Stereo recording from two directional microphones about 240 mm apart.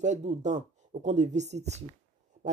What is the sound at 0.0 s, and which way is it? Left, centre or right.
Speech, right.